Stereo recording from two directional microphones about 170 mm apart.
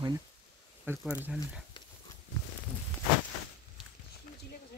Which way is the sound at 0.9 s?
10° right (ahead or behind).